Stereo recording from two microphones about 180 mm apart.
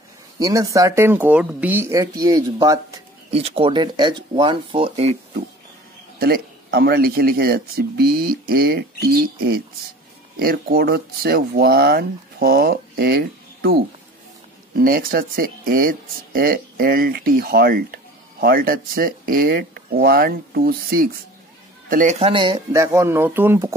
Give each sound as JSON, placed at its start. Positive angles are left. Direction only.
{"t": 0.4, "sound": "speech", "side_deg": -20}
{"t": 3.3, "sound": "speech", "side_deg": -35}
{"t": 6.1, "sound": "speech", "side_deg": -60}
{"t": 14.8, "sound": "a man's voice", "side_deg": -55}
{"t": 22.2, "sound": "speech", "side_deg": -30}